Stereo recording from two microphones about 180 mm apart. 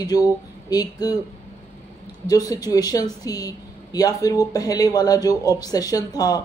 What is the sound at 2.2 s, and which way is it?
Speech, 20° left (ahead or behind).